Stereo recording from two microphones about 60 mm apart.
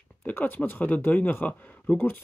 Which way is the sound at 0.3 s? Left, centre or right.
Left.